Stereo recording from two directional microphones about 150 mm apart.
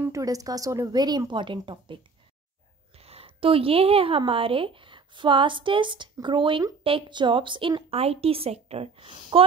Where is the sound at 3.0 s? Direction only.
40° right (ahead or behind).